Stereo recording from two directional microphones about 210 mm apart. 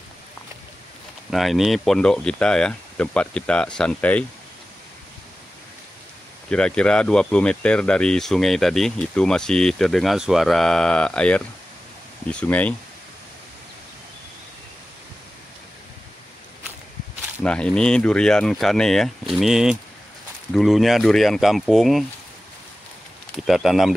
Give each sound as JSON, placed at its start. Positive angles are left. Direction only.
{"t": 1.3, "sound": "speech", "side_deg": 0}
{"t": 6.5, "sound": "speech", "side_deg": 5}
{"t": 17.4, "sound": "speech", "side_deg": 5}
{"t": 23.4, "sound": "speech", "side_deg": 0}